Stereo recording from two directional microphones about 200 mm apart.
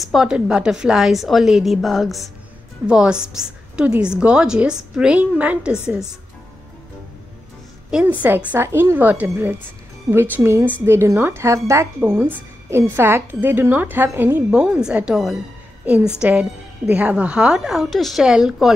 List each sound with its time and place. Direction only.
0.0 s a woman's voice: centre (ahead or behind)
7.9 s a woman's voice: 10° right (ahead or behind)